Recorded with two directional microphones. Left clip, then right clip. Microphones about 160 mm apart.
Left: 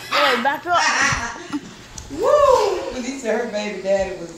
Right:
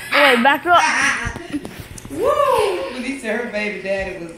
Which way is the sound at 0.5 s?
25° right (ahead or behind).